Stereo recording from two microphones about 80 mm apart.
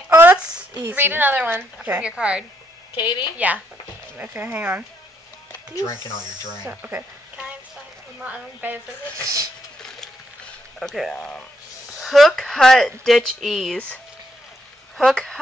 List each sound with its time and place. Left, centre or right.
0.1 s a sound: right
0.4 s a sound: centre
0.8 s a woman's voice: right
5.8 s speech: left
6.7 s speech: right
9.1 s speech: right
10.8 s speech: centre
12.0 s speech: centre
15.0 s speech: centre